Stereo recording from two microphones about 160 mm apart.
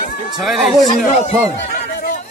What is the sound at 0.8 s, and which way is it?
Speech, 45° left (ahead or behind).